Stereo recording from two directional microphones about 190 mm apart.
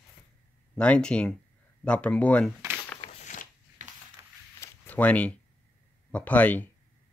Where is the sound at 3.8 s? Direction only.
40° right (ahead or behind).